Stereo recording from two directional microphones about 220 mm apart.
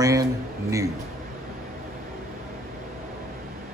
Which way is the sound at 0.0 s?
15° right (ahead or behind).